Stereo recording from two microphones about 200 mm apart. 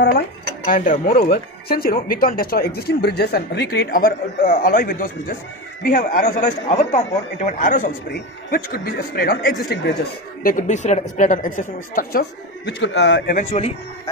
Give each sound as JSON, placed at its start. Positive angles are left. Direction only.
{"t": 0.7, "sound": "speech", "side_deg": 45}
{"t": 10.4, "sound": "speech", "side_deg": 40}
{"t": 13.4, "sound": "speech", "side_deg": 30}